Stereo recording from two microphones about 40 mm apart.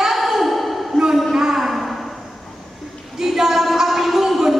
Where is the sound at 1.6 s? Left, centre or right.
Centre.